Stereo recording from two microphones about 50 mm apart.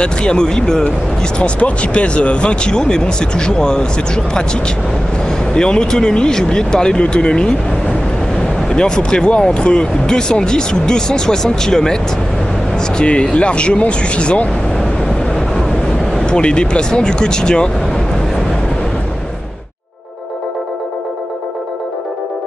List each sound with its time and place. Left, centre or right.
0.0 s speech: centre
8.6 s speech: centre
16.1 s speech: centre